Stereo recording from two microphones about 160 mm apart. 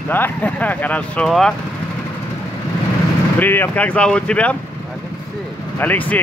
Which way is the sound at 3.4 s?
10° left (ahead or behind).